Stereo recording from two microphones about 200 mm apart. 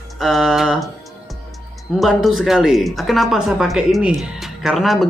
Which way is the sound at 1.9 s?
Centre (ahead or behind).